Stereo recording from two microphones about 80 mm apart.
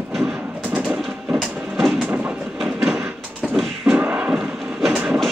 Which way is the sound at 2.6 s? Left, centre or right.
Centre.